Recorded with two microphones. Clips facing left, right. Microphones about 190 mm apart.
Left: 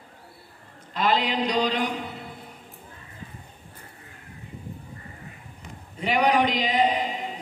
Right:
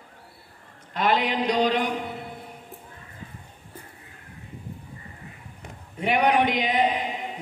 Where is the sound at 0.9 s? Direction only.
60° right (ahead or behind).